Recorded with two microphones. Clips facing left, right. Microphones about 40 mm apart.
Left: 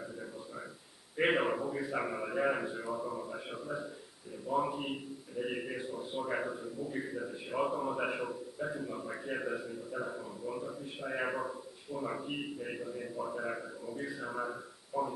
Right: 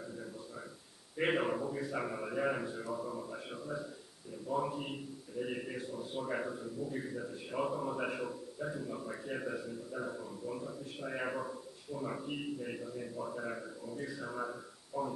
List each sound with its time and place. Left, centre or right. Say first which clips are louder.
1.1 s a man's voice: left 3 dB; centre